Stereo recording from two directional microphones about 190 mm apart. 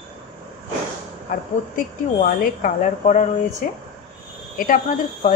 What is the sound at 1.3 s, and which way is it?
A woman's voice, 50° left (ahead or behind).